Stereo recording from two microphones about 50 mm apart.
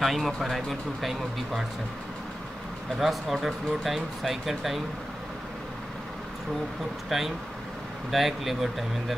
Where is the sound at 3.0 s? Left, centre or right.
Centre.